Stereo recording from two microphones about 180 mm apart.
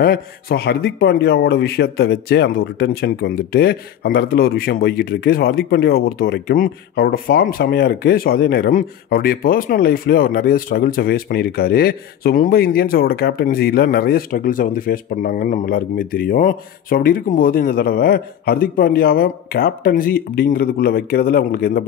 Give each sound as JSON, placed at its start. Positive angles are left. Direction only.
{"t": 0.0, "sound": "speech", "side_deg": 55}